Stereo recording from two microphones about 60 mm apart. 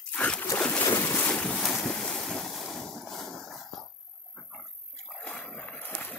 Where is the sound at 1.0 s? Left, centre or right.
Left.